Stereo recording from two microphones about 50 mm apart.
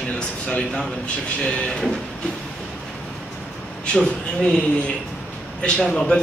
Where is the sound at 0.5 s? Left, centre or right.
Centre.